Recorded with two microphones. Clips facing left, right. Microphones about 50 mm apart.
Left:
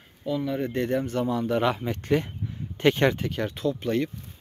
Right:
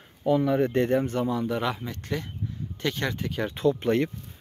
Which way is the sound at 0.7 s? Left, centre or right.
Right.